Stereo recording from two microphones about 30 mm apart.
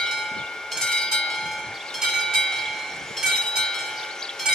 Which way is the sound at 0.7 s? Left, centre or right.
Centre.